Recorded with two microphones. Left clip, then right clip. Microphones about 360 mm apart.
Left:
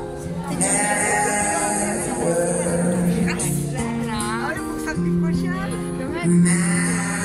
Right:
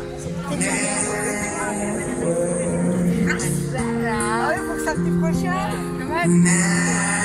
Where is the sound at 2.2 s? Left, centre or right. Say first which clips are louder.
Left 1 dB; left.